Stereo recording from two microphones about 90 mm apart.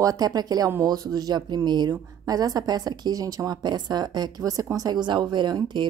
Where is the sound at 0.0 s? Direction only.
45° right (ahead or behind).